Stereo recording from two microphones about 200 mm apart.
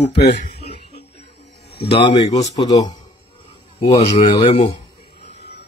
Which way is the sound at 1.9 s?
25° left (ahead or behind).